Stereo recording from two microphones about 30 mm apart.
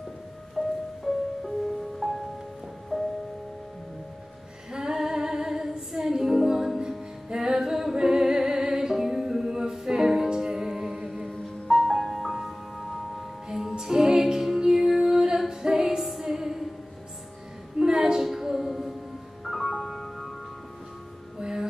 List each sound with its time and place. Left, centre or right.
0.6 s music: centre
4.9 s music: centre
11.2 s music: left
11.7 s music: centre
13.6 s music: centre
16.0 s music: centre
17.7 s music: right
18.2 s female singing: centre
19.4 s music: centre
21.4 s music: right